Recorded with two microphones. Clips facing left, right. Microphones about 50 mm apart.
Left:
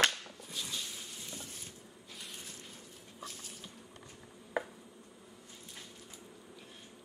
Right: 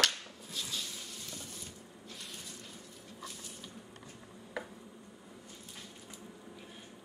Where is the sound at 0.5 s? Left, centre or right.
Centre.